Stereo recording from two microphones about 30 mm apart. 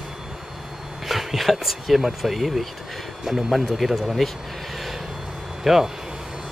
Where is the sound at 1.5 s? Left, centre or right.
Centre.